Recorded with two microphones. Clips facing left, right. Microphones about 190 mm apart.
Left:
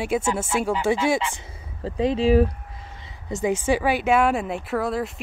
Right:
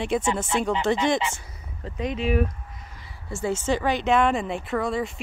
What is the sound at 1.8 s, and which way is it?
Speech, 30° left (ahead or behind).